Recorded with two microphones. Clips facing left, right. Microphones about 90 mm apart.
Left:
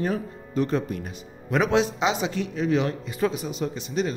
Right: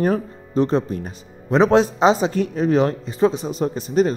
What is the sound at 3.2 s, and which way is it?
Speech, 30° right (ahead or behind).